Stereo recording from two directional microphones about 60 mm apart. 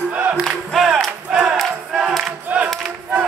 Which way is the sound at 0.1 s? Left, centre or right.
Right.